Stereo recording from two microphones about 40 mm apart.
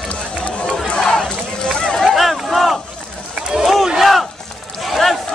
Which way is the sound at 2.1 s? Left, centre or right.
Centre.